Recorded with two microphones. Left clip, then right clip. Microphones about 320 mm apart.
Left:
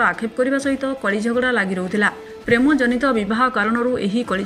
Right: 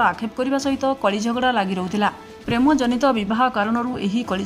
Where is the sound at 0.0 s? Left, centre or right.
Centre.